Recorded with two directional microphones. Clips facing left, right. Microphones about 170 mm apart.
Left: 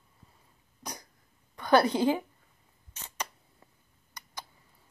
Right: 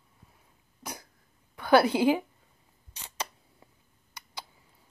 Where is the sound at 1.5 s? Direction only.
5° right (ahead or behind).